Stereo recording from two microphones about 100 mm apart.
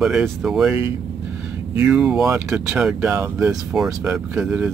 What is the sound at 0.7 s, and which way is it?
Speech, 20° right (ahead or behind).